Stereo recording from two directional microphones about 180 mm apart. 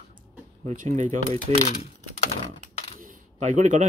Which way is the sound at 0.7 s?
45° right (ahead or behind).